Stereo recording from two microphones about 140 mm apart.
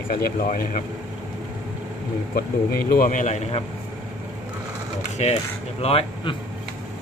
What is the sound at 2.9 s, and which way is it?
Speech, 80° left.